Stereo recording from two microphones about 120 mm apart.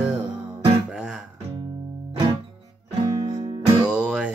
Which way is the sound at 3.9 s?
10° right (ahead or behind).